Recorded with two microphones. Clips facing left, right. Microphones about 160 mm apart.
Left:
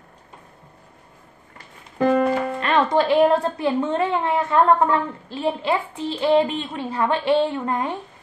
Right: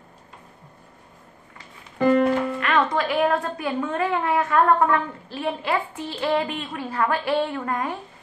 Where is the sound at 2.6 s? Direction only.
30° left (ahead or behind).